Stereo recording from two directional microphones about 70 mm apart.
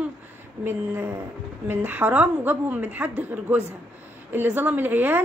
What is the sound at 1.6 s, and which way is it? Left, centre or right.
A woman's voice, right.